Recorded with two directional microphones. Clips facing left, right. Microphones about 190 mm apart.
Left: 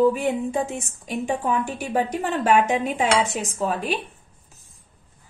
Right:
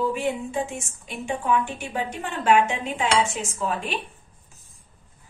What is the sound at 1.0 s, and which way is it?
A woman's voice, 40° left (ahead or behind).